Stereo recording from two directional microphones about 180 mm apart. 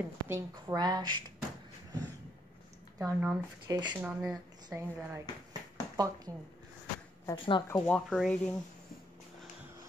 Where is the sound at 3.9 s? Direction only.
5° right (ahead or behind).